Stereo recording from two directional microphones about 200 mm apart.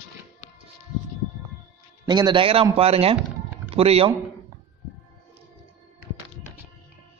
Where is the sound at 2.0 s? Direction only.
20° right (ahead or behind).